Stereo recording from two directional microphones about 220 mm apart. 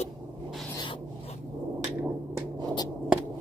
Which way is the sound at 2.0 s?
15° right (ahead or behind).